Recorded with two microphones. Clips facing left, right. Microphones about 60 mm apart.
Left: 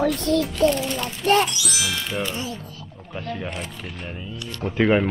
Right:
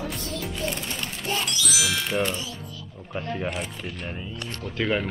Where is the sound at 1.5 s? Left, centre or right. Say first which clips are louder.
Even; centre.